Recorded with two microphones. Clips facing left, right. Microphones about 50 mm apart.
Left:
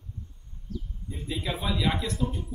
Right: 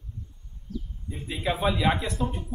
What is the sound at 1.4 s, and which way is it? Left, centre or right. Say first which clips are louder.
Speech: right 5 dB; right.